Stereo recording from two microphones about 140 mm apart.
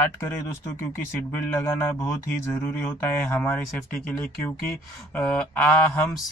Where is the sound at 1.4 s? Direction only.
15° left (ahead or behind).